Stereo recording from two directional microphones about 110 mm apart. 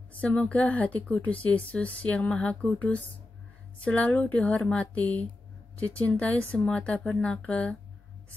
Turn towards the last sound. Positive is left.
turn(degrees=10)  # may be behind; listen again after turning